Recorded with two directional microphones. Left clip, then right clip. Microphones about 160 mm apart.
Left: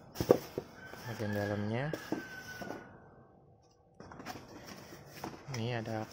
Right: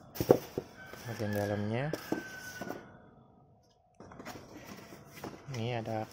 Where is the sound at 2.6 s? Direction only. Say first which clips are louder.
Right 2 dB; 35° right (ahead or behind).